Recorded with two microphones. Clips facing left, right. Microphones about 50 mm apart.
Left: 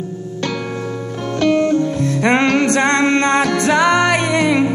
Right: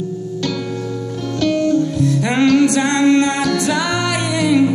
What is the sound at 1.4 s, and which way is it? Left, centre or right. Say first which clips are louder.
Music: left 1 dB; left.